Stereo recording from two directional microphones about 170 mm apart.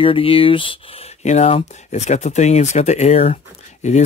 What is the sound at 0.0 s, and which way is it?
Speech, 30° left (ahead or behind).